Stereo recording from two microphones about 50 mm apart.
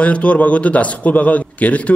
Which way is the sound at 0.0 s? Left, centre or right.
Left.